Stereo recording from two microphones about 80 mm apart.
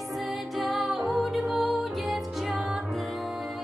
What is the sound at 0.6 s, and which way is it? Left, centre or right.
Music, centre.